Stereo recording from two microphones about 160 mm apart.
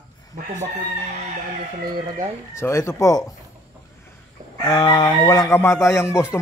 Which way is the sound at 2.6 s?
15° left (ahead or behind).